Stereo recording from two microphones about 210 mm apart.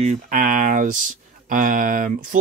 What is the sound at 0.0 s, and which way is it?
Speech, 40° right (ahead or behind).